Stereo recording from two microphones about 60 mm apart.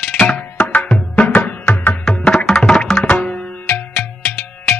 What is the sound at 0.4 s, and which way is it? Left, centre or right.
Tabla, left.